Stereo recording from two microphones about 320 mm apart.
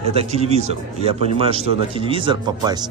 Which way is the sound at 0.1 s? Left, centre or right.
Centre.